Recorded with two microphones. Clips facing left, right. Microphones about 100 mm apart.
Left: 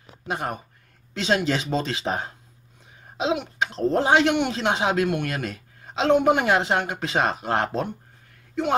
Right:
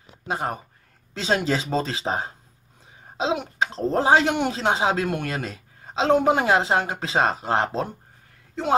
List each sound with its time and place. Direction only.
0.3 s a man's voice: 30° right (ahead or behind)
3.2 s cough: 35° right (ahead or behind)
3.9 s a man's voice: 35° right (ahead or behind)